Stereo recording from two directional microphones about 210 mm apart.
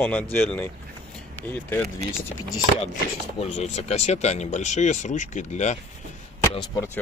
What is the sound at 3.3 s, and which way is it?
Speech, 30° left (ahead or behind).